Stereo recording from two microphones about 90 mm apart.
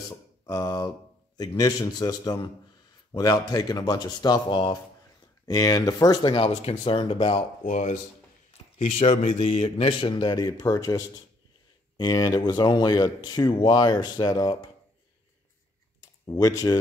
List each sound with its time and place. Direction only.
0.5 s speech: 45° left (ahead or behind)
5.5 s speech: 45° left (ahead or behind)
6.3 s speech: 90° left
8.9 s a man's voice: 90° left
10.1 s speech: 50° left (ahead or behind)
16.3 s speech: 40° left (ahead or behind)